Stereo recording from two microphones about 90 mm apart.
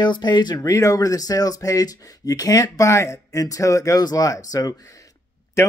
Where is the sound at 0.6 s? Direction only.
35° left (ahead or behind).